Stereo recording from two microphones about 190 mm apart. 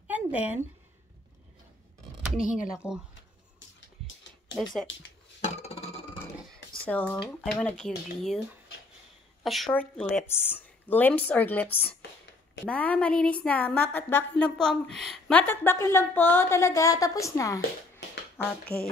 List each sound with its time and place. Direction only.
0.1 s a sound: 10° right (ahead or behind)
2.4 s speech: 45° left (ahead or behind)
2.7 s speech: 5° right (ahead or behind)
4.9 s speech: 80° left
5.4 s a sound: 35° left (ahead or behind)
6.8 s speech: 5° left (ahead or behind)
9.4 s a woman's voice: centre (ahead or behind); by 17.6 s 20° left (ahead or behind)